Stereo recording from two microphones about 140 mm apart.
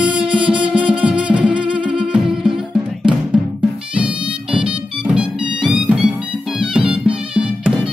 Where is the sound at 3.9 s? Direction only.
10° right (ahead or behind).